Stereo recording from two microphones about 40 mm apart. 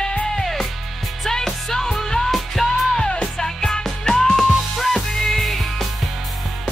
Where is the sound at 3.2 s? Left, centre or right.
Centre.